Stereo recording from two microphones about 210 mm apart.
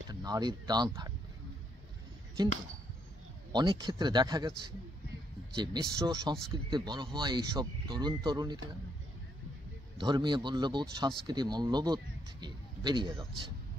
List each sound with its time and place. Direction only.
0.1 s speech: 20° right (ahead or behind)
3.5 s speech: 20° right (ahead or behind)
5.6 s speech: 20° right (ahead or behind)
9.9 s speech: 20° right (ahead or behind)